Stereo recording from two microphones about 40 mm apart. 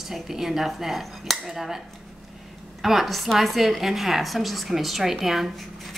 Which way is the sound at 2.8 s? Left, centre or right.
Centre.